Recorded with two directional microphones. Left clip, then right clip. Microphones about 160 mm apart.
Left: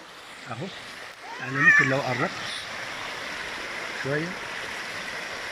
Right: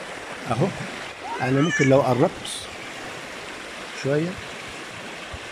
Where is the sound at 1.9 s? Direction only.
25° right (ahead or behind).